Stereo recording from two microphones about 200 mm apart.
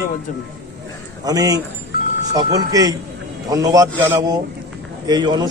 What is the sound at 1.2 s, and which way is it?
A man's voice, 20° right (ahead or behind).